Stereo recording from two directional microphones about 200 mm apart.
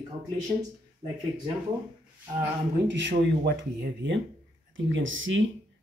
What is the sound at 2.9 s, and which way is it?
Speech, 65° right (ahead or behind).